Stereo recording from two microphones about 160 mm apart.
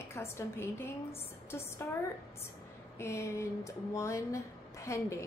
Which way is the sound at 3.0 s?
20° left (ahead or behind).